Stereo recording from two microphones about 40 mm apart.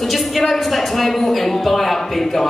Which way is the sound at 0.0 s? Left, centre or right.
Centre.